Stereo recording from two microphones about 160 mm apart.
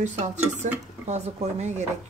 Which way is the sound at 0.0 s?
45° right (ahead or behind).